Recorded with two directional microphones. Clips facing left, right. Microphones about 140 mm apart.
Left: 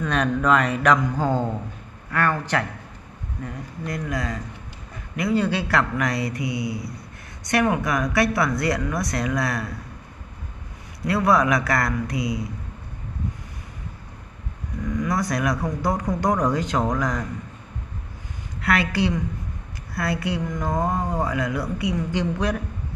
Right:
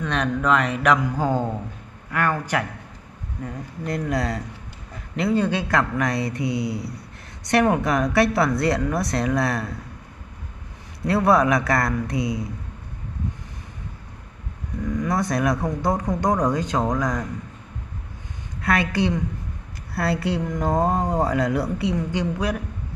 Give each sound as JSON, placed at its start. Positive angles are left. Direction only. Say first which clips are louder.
{"t": 0.0, "sound": "a man's voice", "louder": "left 1 dB", "side_deg": 0}
{"t": 3.4, "sound": "speech", "louder": "right 2 dB", "side_deg": -30}
{"t": 7.5, "sound": "speech", "louder": "right 2 dB", "side_deg": -35}
{"t": 11.1, "sound": "speech", "louder": "right 1 dB", "side_deg": -25}
{"t": 14.9, "sound": "speech", "louder": "right 1 dB", "side_deg": -25}
{"t": 18.6, "sound": "speech", "louder": "even", "side_deg": -25}
{"t": 19.9, "sound": "speech", "louder": "right 2 dB", "side_deg": -30}
{"t": 22.1, "sound": "speech", "louder": "even", "side_deg": -10}